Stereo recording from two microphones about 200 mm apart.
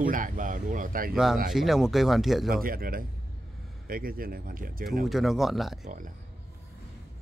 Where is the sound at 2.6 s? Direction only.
45° right (ahead or behind).